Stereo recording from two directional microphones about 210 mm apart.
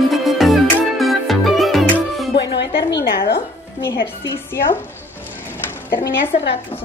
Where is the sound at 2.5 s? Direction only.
55° left (ahead or behind).